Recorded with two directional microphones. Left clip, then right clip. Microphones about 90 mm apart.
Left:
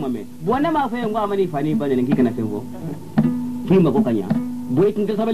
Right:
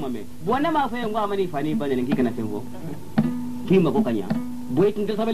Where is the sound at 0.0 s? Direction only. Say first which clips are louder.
Left 4 dB; 20° right (ahead or behind).